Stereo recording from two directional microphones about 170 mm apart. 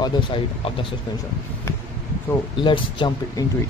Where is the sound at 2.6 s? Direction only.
30° left (ahead or behind).